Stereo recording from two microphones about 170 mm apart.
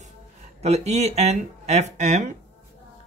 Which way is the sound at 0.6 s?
40° right (ahead or behind).